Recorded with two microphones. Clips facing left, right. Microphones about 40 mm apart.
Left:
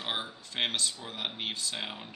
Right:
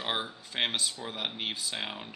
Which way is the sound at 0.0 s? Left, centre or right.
Centre.